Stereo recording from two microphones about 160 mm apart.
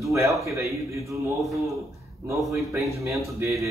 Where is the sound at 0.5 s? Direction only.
20° right (ahead or behind).